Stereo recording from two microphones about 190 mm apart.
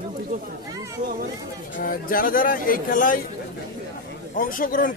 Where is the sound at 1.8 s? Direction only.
50° left (ahead or behind).